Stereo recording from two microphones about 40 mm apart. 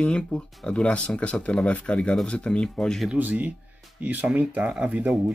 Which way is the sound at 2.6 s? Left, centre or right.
Centre.